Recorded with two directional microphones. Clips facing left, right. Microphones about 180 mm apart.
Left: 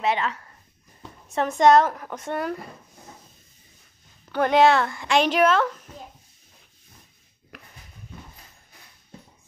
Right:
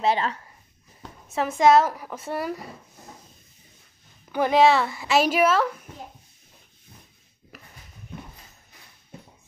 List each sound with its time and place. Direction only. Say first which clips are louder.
0.0 s speech: right 1 dB; 35° right (ahead or behind)
1.3 s speech: left 1 dB; centre (ahead or behind)
4.3 s speech: even; 5° right (ahead or behind)